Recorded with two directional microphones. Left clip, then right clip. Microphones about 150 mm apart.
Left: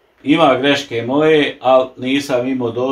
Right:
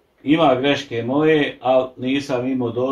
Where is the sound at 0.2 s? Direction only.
20° left (ahead or behind).